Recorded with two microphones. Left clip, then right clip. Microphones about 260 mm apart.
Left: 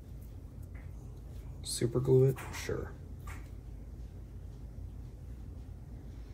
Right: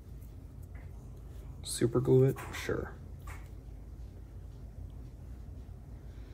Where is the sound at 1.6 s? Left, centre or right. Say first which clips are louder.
Right 3 dB; right.